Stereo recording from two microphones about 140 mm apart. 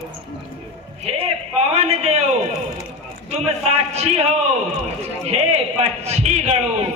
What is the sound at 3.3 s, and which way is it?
Speech, 50° right (ahead or behind).